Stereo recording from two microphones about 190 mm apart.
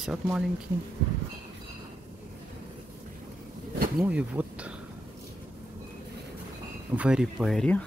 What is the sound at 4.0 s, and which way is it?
Speech, 5° right (ahead or behind).